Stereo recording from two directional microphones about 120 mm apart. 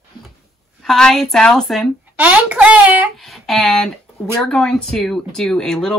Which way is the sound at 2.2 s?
10° right (ahead or behind).